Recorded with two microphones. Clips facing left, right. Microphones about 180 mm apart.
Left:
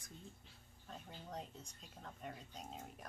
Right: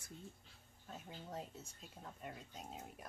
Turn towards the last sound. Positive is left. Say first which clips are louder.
# even
turn(degrees=-5)  # may be behind; listen again after turning